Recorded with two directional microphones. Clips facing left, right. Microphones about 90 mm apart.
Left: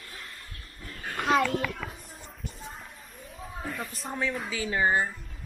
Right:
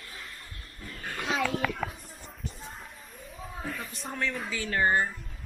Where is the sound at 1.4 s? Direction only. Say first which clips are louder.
Even; centre (ahead or behind).